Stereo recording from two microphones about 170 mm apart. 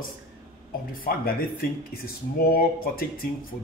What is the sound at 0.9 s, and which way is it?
Speech, 60° left (ahead or behind).